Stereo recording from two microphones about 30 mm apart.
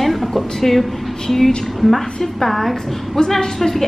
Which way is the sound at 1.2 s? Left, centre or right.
Centre.